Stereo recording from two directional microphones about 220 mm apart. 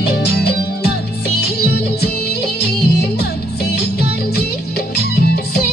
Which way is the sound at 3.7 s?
45° left (ahead or behind).